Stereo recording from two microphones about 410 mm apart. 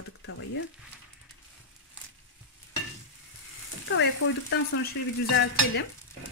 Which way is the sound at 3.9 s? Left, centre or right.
Left.